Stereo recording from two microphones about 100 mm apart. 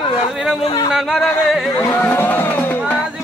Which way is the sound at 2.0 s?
20° left (ahead or behind).